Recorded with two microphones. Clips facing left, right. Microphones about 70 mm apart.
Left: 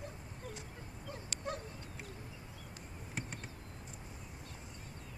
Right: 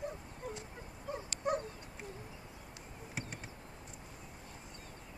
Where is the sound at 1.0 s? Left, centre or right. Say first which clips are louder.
Right 6 dB; right.